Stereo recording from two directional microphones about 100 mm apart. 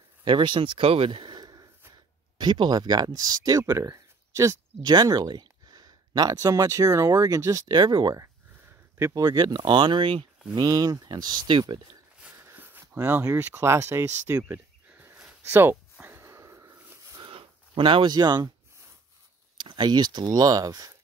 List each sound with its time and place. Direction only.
0.2 s speech: 50° right (ahead or behind); by 4.9 s 30° right (ahead or behind)
4.9 s speech: 40° right (ahead or behind)
9.2 s speech: 45° right (ahead or behind)
10.5 s speech: 40° right (ahead or behind)
12.2 s a sound: 20° right (ahead or behind)
13.2 s speech: 30° right (ahead or behind)
15.7 s a sound: 20° right (ahead or behind)
17.2 s a sound: 60° right (ahead or behind); by 18.5 s 45° right (ahead or behind)
19.5 s speech: 50° right (ahead or behind)